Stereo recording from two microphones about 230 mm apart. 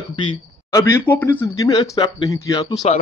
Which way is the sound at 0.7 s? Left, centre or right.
Centre.